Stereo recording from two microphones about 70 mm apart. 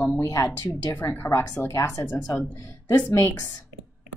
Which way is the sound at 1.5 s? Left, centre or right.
Left.